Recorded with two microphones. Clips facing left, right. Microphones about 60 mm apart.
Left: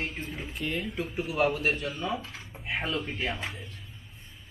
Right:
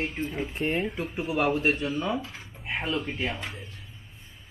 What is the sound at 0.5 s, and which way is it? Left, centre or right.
Speech, right.